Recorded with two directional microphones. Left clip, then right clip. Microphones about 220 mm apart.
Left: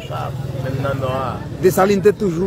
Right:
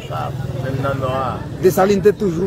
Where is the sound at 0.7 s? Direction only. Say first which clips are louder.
Right 1 dB; 35° left (ahead or behind).